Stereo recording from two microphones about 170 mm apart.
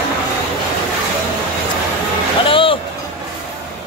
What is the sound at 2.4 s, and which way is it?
Music, 30° left (ahead or behind).